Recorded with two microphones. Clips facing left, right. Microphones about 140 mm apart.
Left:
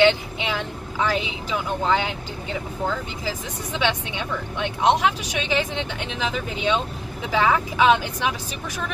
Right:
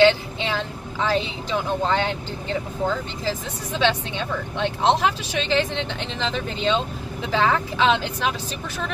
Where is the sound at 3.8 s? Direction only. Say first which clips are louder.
Right 3 dB; 15° left (ahead or behind).